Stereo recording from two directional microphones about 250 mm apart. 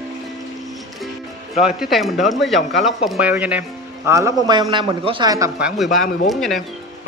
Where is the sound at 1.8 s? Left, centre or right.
Centre.